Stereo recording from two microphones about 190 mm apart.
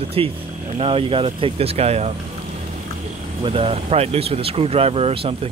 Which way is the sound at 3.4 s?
30° right (ahead or behind).